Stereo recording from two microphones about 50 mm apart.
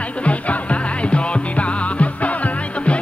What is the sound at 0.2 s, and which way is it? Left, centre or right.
Music, left.